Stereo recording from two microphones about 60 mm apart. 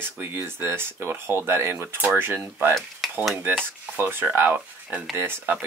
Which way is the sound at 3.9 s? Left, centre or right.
Right.